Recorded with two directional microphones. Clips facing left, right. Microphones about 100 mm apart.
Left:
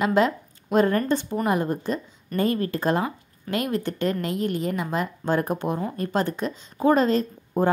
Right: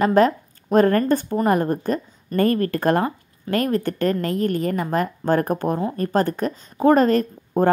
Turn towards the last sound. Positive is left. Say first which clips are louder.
# right 4 dB
turn(degrees=-55)  # may be behind; listen again after turning